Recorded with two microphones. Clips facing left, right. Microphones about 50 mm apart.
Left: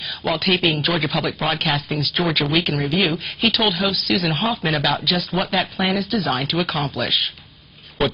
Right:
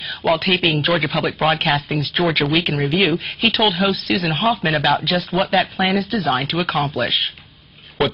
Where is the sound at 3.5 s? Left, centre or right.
Centre.